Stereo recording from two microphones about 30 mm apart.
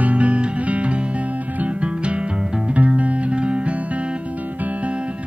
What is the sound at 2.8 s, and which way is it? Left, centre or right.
Music, right.